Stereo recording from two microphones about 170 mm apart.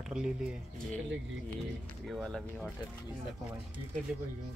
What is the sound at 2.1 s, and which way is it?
Speech, centre (ahead or behind).